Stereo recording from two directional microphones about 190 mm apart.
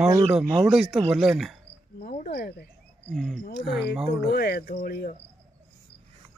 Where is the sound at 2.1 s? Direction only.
50° left (ahead or behind).